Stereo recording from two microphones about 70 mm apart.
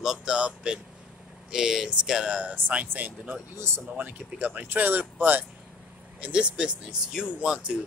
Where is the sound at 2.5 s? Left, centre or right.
Right.